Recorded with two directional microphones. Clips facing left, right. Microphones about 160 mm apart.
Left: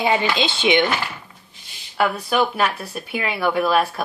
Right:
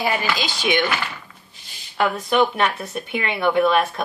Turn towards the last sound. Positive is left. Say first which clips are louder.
# right 1 dB
turn(degrees=5)  # may be behind; listen again after turning